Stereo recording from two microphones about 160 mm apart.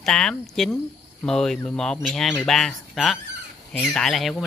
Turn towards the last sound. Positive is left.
turn(degrees=0)  # may be behind; listen again after turning